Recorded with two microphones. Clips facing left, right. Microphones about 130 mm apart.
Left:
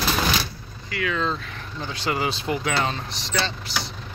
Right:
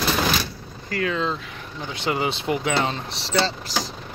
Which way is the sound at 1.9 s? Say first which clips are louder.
Right 1 dB; 20° right (ahead or behind).